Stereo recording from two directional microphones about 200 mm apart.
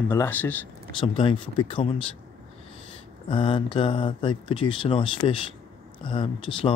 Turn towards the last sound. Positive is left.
turn(degrees=25)  # may be behind; listen again after turning